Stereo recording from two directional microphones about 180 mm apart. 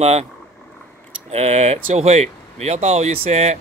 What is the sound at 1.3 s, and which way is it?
Speech, 35° right (ahead or behind).